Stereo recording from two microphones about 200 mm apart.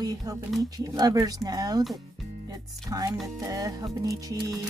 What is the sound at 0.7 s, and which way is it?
Speech, 20° right (ahead or behind).